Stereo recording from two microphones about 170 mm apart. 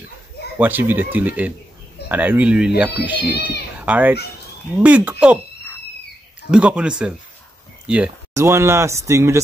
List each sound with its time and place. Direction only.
0.6 s speech: 10° right (ahead or behind)
6.5 s speech: 5° right (ahead or behind)